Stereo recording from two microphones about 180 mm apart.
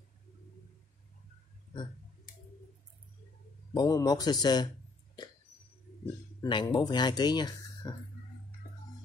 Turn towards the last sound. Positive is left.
turn(degrees=20)  # may be behind; listen again after turning